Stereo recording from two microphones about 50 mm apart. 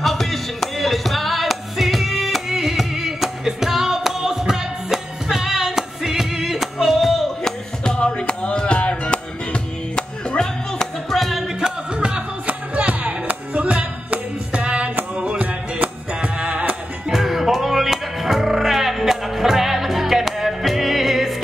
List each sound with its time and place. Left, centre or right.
0.0 s music: centre
7.8 s music: centre
11.6 s music: centre
17.1 s music: centre